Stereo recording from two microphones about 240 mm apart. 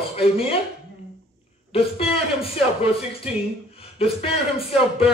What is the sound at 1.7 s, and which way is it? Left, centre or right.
Speech, left.